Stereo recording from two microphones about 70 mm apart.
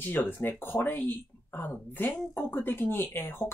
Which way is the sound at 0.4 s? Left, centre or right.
Left.